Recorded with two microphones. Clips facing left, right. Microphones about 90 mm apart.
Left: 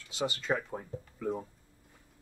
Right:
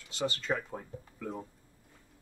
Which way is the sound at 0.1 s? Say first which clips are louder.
Left 1 dB; 10° left (ahead or behind).